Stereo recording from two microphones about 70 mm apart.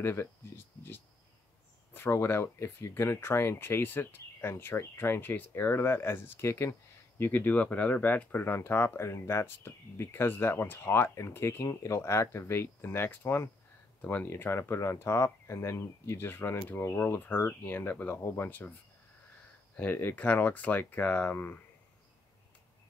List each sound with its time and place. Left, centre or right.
0.0 s speech: left
2.0 s speech: left
16.9 s speech: left
19.8 s speech: left